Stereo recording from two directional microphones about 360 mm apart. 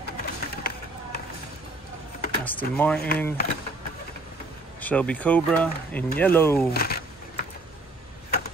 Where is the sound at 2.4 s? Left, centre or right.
Centre.